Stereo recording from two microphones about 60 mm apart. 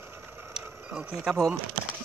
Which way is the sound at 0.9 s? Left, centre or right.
Centre.